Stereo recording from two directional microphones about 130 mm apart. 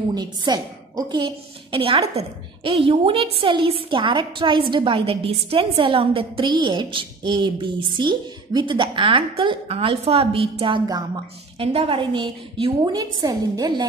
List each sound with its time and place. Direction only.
0.1 s a woman's voice: 30° right (ahead or behind)